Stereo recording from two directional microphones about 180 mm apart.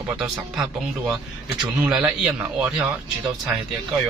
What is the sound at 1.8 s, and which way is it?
A man's voice, 10° right (ahead or behind).